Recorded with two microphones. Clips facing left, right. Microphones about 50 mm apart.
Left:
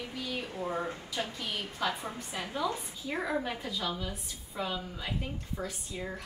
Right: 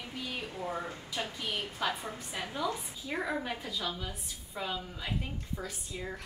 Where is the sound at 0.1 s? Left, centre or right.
Centre.